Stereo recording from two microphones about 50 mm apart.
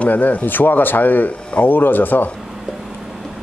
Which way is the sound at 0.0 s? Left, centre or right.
Left.